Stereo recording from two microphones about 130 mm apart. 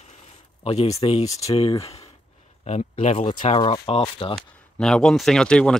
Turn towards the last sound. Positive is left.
turn(degrees=5)  # may be behind; listen again after turning